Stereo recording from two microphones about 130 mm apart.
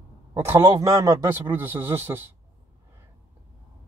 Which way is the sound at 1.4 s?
15° right (ahead or behind).